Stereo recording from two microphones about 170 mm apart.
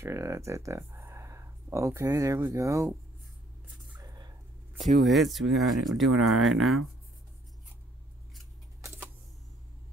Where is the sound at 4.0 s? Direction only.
20° right (ahead or behind).